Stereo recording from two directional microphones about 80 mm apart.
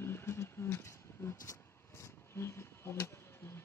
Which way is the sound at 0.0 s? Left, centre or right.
Left.